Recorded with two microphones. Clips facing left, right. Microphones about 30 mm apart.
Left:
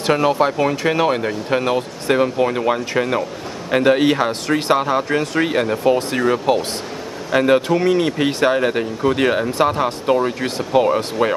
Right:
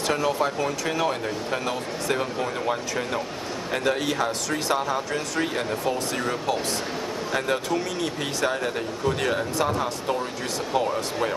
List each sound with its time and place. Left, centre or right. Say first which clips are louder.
0.0 s speech: left 8 dB; left